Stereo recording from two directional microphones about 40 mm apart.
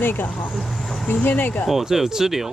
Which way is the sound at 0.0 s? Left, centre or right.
Left.